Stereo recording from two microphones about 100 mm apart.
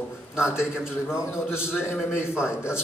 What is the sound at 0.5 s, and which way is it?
A man's voice, 5° right (ahead or behind).